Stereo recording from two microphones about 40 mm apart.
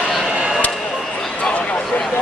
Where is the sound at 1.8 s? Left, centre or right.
Centre.